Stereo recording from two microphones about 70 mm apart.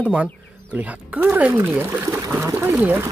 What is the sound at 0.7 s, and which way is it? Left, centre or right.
Speech, right.